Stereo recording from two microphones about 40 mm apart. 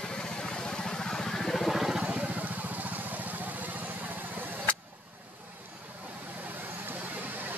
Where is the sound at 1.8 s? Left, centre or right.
Centre.